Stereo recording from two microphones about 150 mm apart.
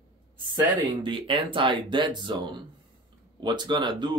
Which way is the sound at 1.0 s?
35° right (ahead or behind).